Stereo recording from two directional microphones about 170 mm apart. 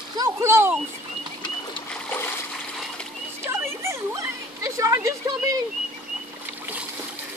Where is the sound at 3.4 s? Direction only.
15° right (ahead or behind).